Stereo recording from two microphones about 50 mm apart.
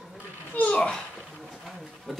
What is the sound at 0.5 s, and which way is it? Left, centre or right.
Speech, left.